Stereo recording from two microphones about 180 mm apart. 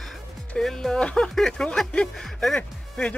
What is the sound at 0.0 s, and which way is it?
Speech, centre (ahead or behind).